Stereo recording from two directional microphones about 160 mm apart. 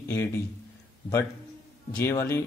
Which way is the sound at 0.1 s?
15° left (ahead or behind).